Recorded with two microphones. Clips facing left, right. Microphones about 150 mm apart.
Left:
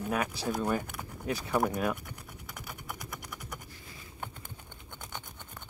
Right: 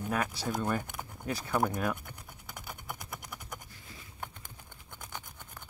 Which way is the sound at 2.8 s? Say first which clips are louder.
Left 1 dB; 25° right (ahead or behind).